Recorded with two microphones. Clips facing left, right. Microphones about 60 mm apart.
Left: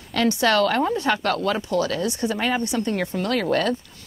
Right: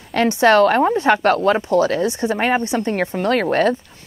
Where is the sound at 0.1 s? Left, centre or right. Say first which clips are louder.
Right 6 dB; right.